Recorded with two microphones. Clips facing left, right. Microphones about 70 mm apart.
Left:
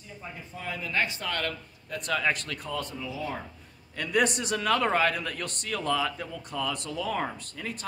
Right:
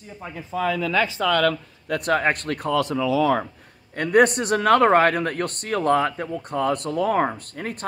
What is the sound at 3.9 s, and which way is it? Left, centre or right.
A man's voice, right.